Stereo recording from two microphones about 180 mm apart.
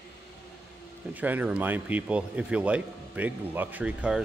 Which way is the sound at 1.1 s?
10° right (ahead or behind).